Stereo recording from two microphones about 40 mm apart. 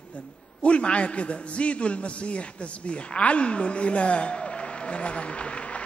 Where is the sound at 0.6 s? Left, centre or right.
Left.